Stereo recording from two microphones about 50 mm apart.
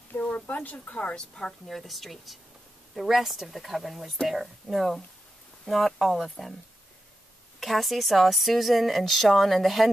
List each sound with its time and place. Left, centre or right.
0.1 s a sound: left
0.7 s a woman's voice: left
1.7 s a woman's voice: centre
7.6 s a woman's voice: centre